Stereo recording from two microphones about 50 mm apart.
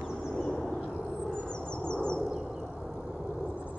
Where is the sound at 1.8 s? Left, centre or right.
Centre.